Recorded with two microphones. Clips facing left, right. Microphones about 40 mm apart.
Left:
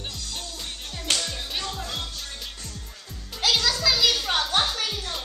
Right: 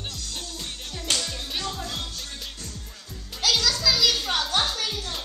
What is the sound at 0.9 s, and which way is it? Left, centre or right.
Music, centre.